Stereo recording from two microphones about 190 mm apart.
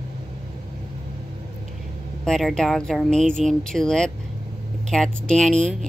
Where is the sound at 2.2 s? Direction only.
Centre (ahead or behind).